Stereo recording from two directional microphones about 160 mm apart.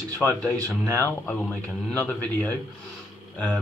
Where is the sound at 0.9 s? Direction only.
10° left (ahead or behind).